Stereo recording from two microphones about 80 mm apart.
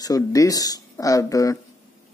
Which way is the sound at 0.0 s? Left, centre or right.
Left.